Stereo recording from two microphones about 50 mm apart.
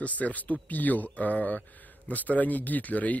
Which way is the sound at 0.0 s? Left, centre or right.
Left.